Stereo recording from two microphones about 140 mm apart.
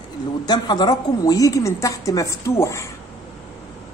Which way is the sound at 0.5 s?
30° left (ahead or behind).